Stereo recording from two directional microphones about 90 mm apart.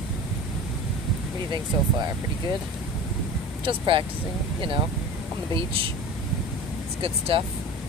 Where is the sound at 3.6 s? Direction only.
70° right (ahead or behind).